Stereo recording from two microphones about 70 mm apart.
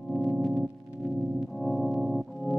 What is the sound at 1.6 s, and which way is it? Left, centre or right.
Music, centre.